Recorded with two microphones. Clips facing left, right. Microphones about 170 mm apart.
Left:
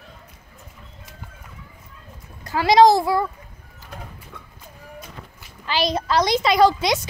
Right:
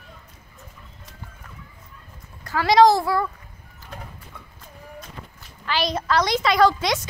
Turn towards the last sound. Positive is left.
turn(degrees=15)  # may be behind; listen again after turning